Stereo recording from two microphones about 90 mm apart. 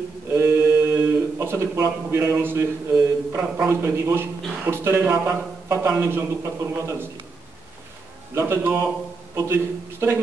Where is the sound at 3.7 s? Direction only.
25° right (ahead or behind).